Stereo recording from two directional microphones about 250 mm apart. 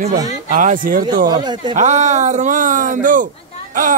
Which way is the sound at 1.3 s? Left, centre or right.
Centre.